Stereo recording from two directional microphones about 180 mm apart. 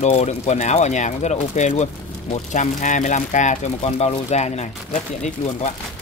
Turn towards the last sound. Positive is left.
turn(degrees=40)  # may be behind; listen again after turning